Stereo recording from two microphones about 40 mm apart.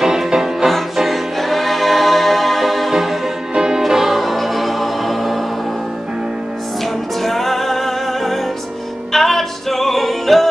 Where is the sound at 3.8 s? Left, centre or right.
Centre.